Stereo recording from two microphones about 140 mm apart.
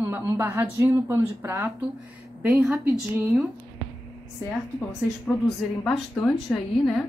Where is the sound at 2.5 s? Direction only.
Centre (ahead or behind).